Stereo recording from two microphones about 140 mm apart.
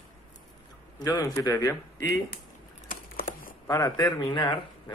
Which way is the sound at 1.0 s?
25° left (ahead or behind).